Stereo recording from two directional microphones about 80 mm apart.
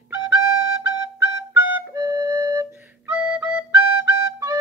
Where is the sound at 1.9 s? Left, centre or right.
Right.